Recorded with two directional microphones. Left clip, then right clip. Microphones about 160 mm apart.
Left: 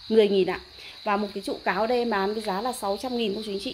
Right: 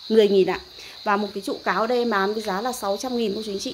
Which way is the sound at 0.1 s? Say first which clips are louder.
Right 3 dB; centre (ahead or behind).